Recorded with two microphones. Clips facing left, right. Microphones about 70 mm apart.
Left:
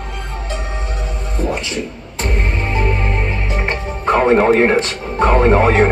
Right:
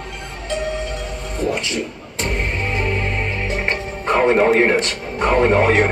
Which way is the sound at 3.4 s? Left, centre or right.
Left.